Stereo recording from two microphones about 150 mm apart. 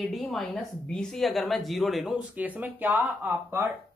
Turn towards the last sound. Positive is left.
turn(degrees=-15)  # may be behind; listen again after turning